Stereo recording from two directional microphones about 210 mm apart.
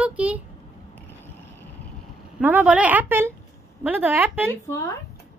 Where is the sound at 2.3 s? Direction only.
5° right (ahead or behind).